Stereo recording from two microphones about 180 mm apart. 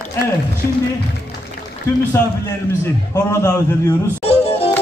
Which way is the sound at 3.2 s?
15° left (ahead or behind).